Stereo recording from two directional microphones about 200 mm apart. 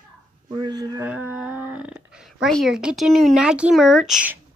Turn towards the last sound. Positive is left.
turn(degrees=-5)  # may be behind; listen again after turning